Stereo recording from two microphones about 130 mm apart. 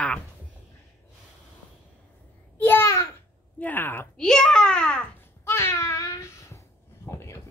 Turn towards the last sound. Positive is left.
turn(degrees=20)  # may be behind; listen again after turning